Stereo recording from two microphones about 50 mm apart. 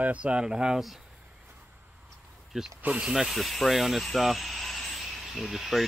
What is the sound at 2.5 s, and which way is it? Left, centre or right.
Speech, centre.